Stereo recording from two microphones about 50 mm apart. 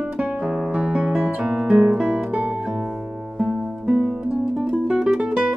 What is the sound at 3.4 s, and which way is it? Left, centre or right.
Music, centre.